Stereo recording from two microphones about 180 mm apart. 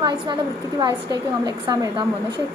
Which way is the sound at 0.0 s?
25° right (ahead or behind).